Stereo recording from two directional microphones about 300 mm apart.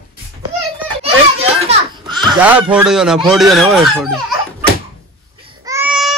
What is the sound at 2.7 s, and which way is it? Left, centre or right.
Speech, centre.